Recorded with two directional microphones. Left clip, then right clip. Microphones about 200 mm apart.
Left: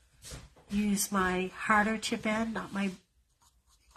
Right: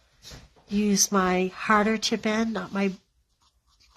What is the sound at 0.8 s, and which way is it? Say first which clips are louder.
Speech: right 7 dB; 50° right (ahead or behind).